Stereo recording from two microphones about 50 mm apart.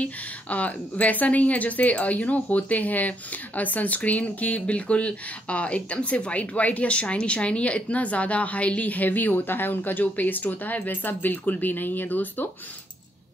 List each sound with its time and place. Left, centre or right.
0.0 s a woman's voice: left